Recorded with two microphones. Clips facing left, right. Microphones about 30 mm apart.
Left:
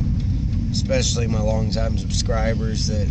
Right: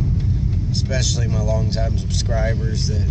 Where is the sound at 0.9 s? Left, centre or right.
Left.